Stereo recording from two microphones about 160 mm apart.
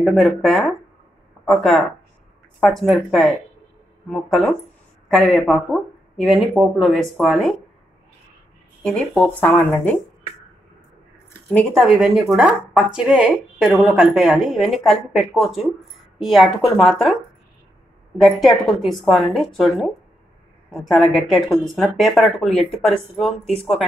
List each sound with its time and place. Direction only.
0.0 s speech: centre (ahead or behind)
8.8 s speech: 10° left (ahead or behind)
11.5 s speech: centre (ahead or behind)